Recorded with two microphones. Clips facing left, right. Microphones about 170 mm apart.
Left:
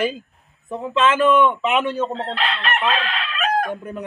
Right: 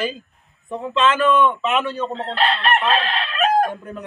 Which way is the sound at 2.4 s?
40° right (ahead or behind).